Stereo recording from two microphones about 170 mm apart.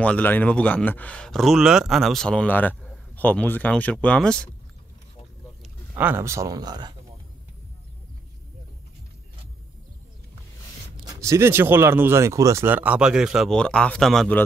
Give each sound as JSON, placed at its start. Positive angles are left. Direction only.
{"t": 0.0, "sound": "speech", "side_deg": 10}
{"t": 5.9, "sound": "speech", "side_deg": -10}
{"t": 11.1, "sound": "speech", "side_deg": -20}